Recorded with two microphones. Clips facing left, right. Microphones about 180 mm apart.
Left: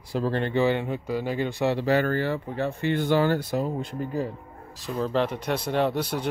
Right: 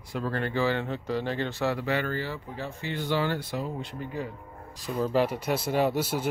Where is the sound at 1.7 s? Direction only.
40° left (ahead or behind).